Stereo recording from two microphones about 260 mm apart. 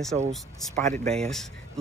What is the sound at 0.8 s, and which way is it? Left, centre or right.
Speech, right.